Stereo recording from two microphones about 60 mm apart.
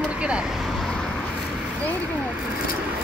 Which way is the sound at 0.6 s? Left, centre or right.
Centre.